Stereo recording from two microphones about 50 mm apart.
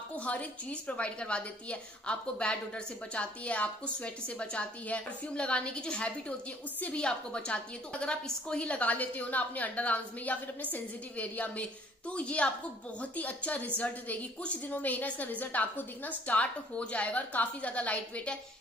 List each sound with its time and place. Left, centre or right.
0.1 s a woman's voice: left